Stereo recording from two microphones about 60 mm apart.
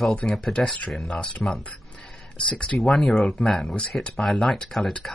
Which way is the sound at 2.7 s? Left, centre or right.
Centre.